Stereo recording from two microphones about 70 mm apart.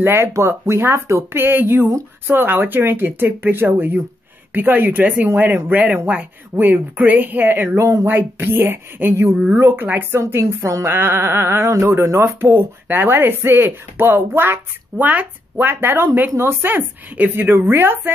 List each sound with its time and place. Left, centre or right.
0.0 s speech: right
8.1 s speech: right
10.9 s speech: right